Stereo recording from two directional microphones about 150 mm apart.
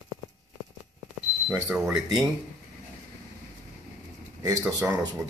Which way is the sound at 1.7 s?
5° right (ahead or behind).